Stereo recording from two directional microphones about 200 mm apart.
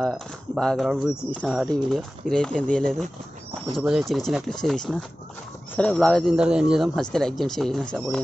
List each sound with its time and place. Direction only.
0.0 s speech: 5° left (ahead or behind)